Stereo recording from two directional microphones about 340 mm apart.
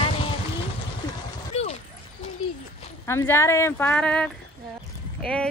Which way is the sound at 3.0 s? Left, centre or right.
Centre.